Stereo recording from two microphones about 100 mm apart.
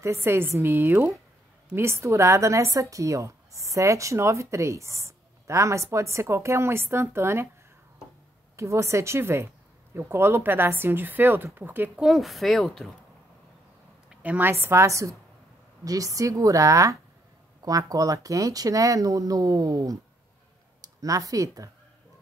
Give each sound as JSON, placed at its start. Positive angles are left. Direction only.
{"t": 0.0, "sound": "a woman's voice", "side_deg": -25}
{"t": 8.5, "sound": "a woman's voice", "side_deg": -30}
{"t": 12.0, "sound": "a woman's voice", "side_deg": 0}
{"t": 14.0, "sound": "a woman's voice", "side_deg": -15}